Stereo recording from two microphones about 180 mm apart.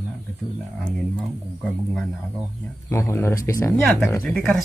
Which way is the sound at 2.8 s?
15° left (ahead or behind).